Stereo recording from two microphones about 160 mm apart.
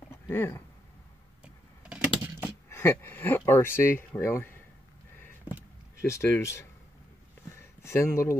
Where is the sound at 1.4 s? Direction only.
5° right (ahead or behind).